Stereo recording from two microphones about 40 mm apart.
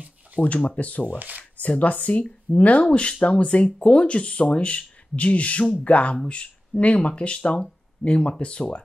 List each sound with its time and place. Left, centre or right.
0.7 s speech: left